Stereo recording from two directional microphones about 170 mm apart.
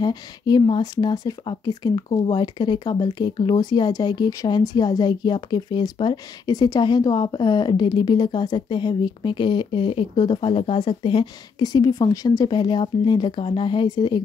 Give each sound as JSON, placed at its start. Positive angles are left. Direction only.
{"t": 0.0, "sound": "speech", "side_deg": 25}